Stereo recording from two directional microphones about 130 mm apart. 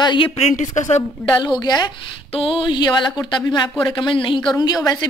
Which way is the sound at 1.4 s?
35° left (ahead or behind).